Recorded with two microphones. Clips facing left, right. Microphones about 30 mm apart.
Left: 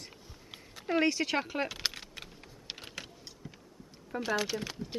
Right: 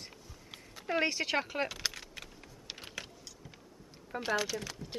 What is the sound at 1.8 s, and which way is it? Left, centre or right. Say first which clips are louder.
Typing: left 2 dB; centre.